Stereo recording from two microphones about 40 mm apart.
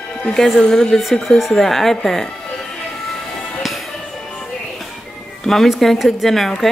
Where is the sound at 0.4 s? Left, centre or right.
Centre.